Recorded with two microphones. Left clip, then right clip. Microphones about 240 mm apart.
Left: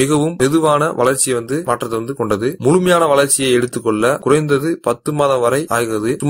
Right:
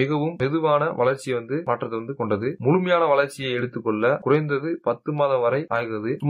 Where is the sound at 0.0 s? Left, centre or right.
Left.